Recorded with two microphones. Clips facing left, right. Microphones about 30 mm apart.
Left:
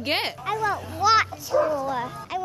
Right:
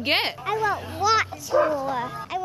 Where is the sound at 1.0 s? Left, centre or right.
Centre.